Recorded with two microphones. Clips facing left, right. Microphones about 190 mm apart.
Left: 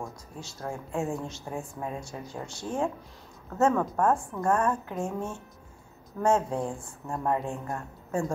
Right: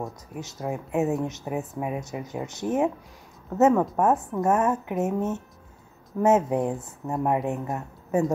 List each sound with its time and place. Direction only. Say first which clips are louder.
0.0 s speech: right 5 dB; 20° right (ahead or behind)